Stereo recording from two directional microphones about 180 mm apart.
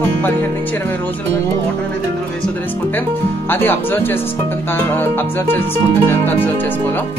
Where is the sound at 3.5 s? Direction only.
10° left (ahead or behind).